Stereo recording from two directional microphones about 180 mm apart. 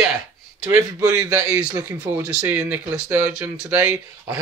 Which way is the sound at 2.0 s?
20° right (ahead or behind).